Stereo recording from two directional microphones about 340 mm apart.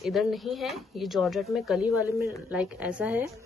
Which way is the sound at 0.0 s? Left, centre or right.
Centre.